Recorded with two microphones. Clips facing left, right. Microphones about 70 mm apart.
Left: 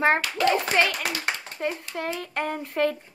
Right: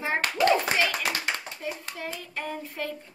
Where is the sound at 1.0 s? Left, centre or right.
Left.